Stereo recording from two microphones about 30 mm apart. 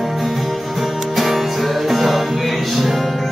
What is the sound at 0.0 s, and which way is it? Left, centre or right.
Music, centre.